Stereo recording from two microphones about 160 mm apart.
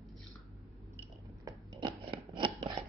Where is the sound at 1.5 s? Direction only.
20° right (ahead or behind).